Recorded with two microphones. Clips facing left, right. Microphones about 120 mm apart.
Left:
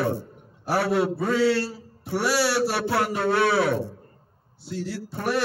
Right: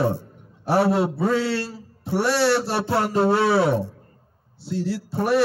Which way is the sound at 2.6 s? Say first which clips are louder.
Right 1 dB; 20° right (ahead or behind).